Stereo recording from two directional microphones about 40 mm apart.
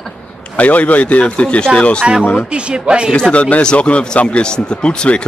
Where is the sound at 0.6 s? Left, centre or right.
Left.